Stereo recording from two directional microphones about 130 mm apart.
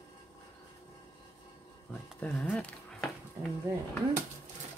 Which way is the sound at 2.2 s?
10° left (ahead or behind).